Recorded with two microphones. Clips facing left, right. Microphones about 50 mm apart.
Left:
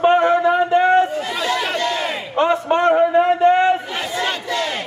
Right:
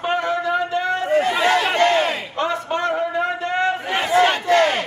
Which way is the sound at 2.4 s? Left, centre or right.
Left.